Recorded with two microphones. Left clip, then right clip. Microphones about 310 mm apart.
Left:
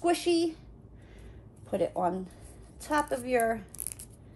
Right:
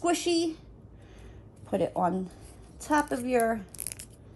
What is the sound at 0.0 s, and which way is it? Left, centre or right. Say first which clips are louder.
Speech: even; right.